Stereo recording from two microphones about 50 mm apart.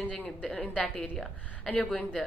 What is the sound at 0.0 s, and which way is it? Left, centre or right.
Speech, left.